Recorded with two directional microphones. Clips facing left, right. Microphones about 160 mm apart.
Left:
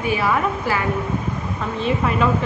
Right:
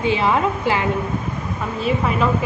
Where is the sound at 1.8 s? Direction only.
Centre (ahead or behind).